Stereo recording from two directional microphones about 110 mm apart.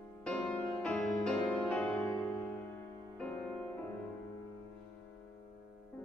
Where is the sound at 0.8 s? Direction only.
10° left (ahead or behind).